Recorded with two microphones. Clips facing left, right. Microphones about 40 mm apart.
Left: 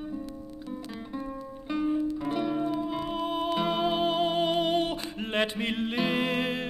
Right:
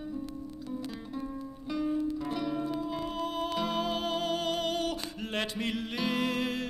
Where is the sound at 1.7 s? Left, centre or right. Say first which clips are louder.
Left 3 dB; left.